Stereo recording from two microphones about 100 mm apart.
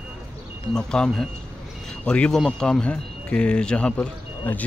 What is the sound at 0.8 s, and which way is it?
Speech, 5° left (ahead or behind).